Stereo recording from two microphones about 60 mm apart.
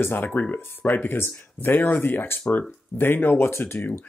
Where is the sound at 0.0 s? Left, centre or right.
Left.